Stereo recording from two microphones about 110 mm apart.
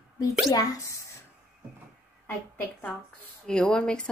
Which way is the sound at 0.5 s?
35° left (ahead or behind).